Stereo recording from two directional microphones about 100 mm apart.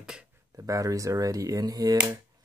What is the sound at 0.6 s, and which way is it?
Speech, 35° right (ahead or behind).